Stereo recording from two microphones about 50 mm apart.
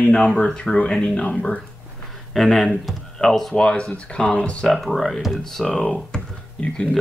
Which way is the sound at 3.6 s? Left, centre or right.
Centre.